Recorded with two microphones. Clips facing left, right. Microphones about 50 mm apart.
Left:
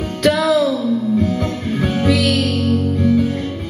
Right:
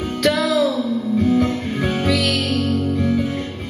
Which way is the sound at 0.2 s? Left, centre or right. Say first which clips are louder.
Left 3 dB; centre.